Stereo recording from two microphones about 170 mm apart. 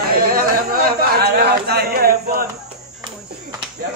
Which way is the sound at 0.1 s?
60° right (ahead or behind).